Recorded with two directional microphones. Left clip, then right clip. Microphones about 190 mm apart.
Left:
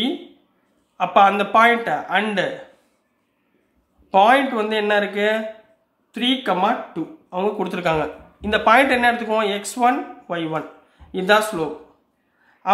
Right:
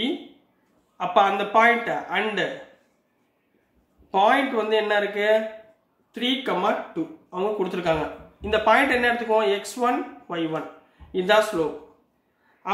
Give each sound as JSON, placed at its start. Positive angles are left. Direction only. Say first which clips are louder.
{"t": 0.9, "sound": "speech", "louder": "left 5 dB", "side_deg": 40}
{"t": 4.1, "sound": "a man's voice", "louder": "left 5 dB", "side_deg": 40}